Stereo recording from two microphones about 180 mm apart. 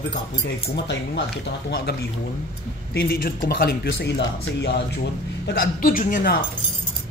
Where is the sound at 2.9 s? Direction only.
55° left (ahead or behind).